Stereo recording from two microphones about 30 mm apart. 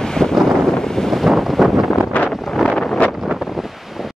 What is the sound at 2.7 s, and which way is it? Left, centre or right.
Wind noise, left.